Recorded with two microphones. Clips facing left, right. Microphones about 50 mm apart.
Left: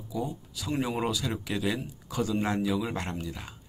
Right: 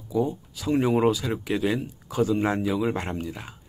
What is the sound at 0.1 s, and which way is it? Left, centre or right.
Speech, right.